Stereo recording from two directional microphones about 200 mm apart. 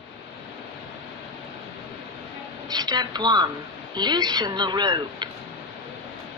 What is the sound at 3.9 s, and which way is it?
A woman's voice, 20° right (ahead or behind).